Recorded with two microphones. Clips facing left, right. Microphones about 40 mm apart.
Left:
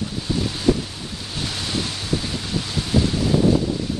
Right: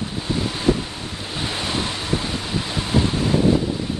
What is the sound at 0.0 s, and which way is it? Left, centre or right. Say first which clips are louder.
Waves: even; right.